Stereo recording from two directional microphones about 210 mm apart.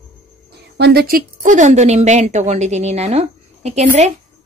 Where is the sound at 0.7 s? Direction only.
50° right (ahead or behind).